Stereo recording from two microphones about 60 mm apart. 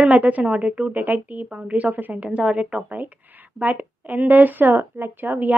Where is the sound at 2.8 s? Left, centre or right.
Right.